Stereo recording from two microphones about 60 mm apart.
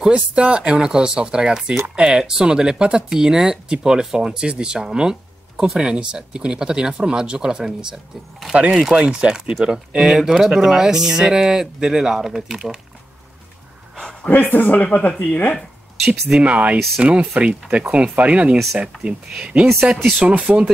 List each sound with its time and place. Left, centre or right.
0.0 s speech: centre
8.5 s speech: right
14.2 s speech: left
16.3 s speech: right